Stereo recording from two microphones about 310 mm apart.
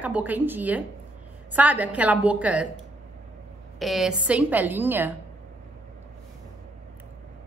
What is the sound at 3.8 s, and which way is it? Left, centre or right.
A woman's voice, centre.